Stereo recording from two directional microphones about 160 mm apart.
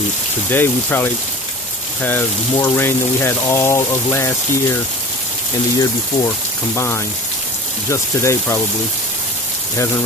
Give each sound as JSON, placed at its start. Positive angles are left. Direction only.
{"t": 0.5, "sound": "speech", "side_deg": 10}
{"t": 2.5, "sound": "speech", "side_deg": 15}
{"t": 5.8, "sound": "speech", "side_deg": 20}